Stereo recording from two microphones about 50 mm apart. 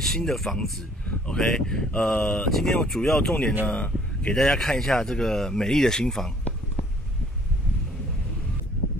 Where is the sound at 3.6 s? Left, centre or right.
Left.